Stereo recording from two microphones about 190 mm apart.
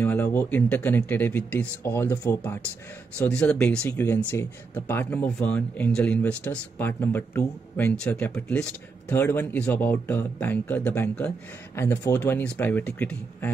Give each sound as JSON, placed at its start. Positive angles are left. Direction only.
{"t": 0.0, "sound": "speech", "side_deg": 10}